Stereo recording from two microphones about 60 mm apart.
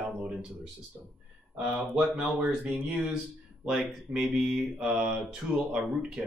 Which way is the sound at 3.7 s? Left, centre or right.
Centre.